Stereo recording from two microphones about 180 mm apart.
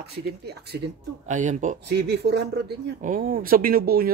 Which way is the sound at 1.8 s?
65° right (ahead or behind).